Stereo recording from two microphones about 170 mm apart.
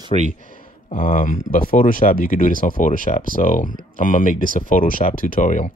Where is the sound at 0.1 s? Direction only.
45° right (ahead or behind).